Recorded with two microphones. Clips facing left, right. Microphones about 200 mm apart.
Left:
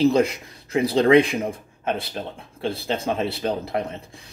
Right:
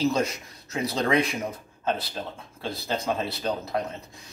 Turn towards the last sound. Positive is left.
turn(degrees=30)  # may be behind; listen again after turning